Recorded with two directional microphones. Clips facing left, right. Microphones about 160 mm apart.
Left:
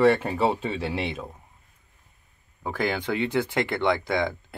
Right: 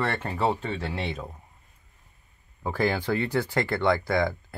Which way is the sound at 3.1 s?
20° left (ahead or behind).